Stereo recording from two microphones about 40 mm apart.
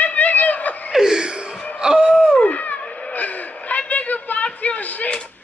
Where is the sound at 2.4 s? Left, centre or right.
Left.